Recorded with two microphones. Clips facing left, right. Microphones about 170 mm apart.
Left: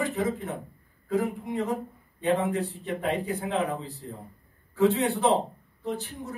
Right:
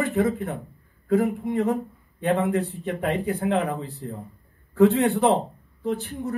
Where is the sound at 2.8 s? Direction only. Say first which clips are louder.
Right 3 dB; 60° right (ahead or behind).